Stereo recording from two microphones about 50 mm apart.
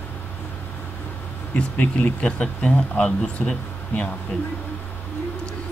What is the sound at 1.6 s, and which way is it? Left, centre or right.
Speech, left.